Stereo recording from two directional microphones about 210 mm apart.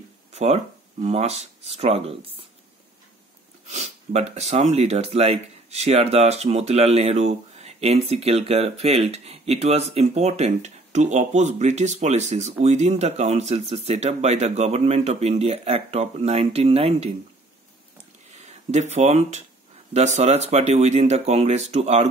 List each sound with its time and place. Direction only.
0.3 s a sound: 30° right (ahead or behind)
1.0 s speech: 30° right (ahead or behind)
3.6 s speech: 30° right (ahead or behind)
18.4 s speech: 30° right (ahead or behind)